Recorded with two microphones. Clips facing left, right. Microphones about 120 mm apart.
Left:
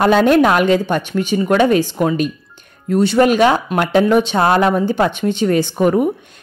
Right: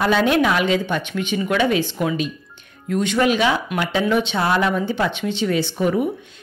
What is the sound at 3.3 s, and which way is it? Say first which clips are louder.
Speech: left 6 dB; 50° left (ahead or behind).